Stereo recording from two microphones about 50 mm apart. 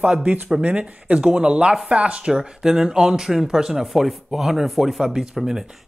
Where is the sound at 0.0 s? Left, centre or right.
Right.